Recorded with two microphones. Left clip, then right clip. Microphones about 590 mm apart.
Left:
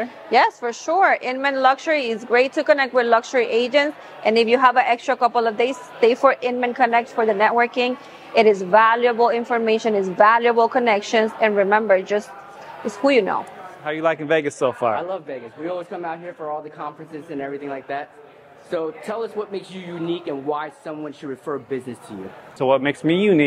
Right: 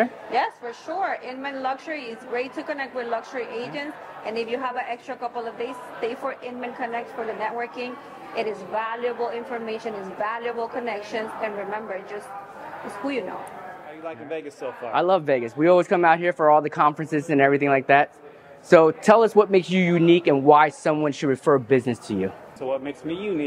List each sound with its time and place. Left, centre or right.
0.3 s a woman's voice: left
13.8 s a man's voice: left
15.0 s speech: right
18.7 s a man's voice: right
22.6 s speech: left